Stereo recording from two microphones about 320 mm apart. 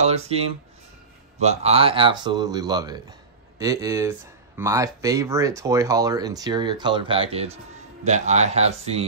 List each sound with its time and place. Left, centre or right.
0.0 s speech: centre